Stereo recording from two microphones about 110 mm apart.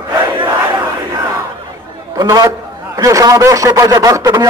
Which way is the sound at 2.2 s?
35° right (ahead or behind).